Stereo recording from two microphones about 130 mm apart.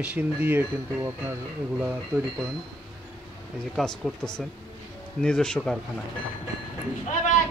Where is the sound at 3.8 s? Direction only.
5° left (ahead or behind).